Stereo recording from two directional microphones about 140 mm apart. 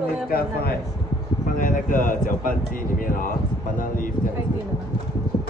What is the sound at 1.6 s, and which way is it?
Speech, 75° left (ahead or behind).